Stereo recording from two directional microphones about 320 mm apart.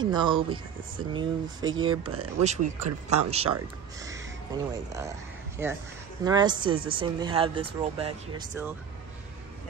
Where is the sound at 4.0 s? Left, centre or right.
Centre.